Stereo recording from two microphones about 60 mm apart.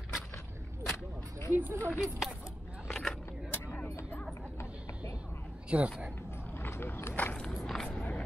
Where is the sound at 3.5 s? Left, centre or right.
Left.